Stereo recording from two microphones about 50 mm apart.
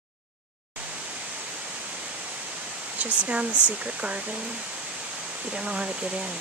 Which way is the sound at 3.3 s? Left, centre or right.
Right.